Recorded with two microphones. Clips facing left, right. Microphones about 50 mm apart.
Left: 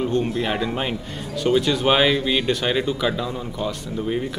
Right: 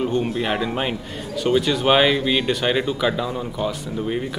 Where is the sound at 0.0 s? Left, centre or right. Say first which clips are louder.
Even; centre.